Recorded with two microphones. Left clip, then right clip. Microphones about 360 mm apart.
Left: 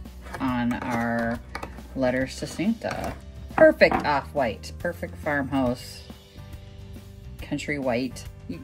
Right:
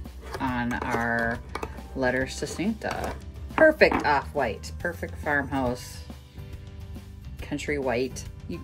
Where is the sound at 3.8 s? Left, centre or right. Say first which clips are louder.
Left 1 dB; right.